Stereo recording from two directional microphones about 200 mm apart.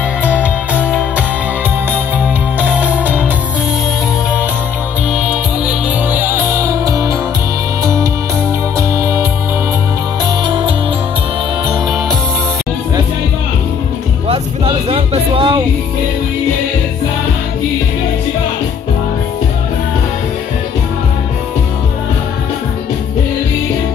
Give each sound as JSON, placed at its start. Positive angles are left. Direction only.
{"t": 0.3, "sound": "music", "side_deg": -5}
{"t": 5.1, "sound": "music", "side_deg": -5}
{"t": 14.2, "sound": "music", "side_deg": -25}